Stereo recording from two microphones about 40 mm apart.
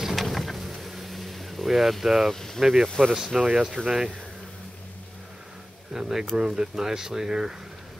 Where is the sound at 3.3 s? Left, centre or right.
Right.